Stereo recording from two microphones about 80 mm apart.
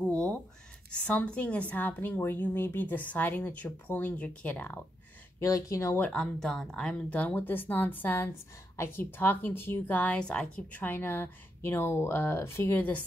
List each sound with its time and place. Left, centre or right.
0.0 s a sound: centre
1.0 s a woman's voice: centre
5.4 s speech: left
5.9 s a woman's voice: left
6.4 s a woman's voice: centre; by 13.0 s left